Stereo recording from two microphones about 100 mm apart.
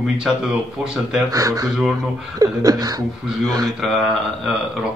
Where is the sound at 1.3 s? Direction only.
35° right (ahead or behind).